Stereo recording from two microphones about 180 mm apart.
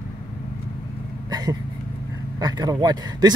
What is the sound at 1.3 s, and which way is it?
Vehicle, 20° right (ahead or behind).